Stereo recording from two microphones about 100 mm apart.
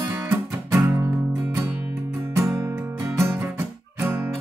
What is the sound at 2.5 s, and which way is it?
Music, 30° right (ahead or behind).